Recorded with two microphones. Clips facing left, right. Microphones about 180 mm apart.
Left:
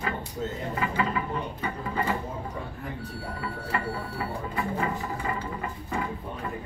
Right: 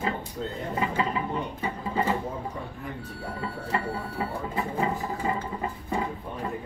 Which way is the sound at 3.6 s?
20° right (ahead or behind).